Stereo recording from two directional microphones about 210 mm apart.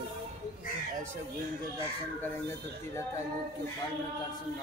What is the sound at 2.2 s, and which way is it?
Speech, 10° left (ahead or behind).